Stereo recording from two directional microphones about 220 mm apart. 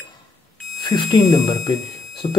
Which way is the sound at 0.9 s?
20° left (ahead or behind).